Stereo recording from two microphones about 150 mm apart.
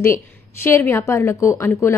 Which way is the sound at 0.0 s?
15° left (ahead or behind).